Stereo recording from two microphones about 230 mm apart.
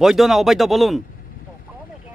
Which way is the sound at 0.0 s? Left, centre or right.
Centre.